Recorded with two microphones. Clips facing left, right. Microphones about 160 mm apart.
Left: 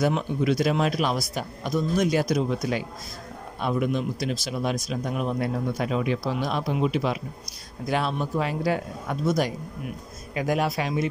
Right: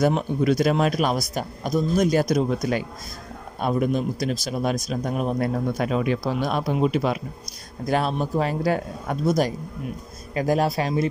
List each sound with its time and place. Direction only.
0.0 s a man's voice: 45° right (ahead or behind)